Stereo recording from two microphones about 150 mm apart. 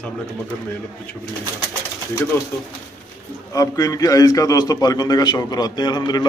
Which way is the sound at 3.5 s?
25° left (ahead or behind).